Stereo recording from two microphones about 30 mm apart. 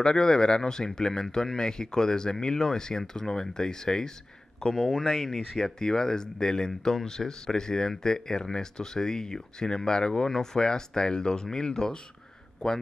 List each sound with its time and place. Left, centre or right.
0.0 s speech: left